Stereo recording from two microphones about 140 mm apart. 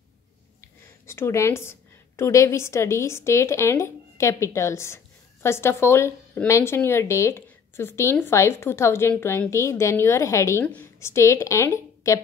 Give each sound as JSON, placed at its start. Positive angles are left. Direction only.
{"t": 0.6, "sound": "a woman's voice", "side_deg": 20}